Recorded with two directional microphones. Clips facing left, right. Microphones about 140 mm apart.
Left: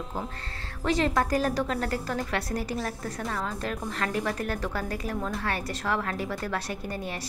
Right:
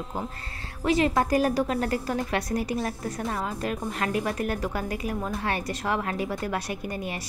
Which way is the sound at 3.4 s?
10° right (ahead or behind).